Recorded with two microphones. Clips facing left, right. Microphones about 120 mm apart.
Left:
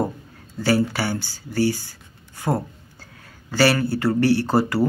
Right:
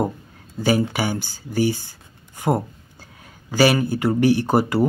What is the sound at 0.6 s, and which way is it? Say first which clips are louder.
Speech: right 1 dB; 15° right (ahead or behind).